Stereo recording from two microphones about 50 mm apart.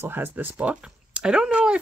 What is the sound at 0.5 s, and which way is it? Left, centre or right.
Speech, right.